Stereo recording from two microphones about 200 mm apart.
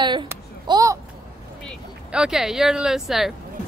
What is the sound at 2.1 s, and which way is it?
Speech, 5° right (ahead or behind).